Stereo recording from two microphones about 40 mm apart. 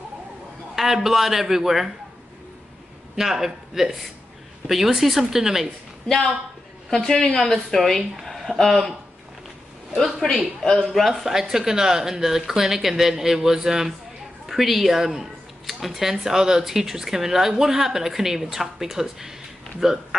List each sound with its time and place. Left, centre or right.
0.7 s speech: centre
3.2 s speech: centre
6.9 s a woman's voice: centre
7.4 s a woman's voice: centre
8.2 s a sound: centre
8.5 s a woman's voice: centre
10.2 s a woman's voice: centre
11.1 s speech: centre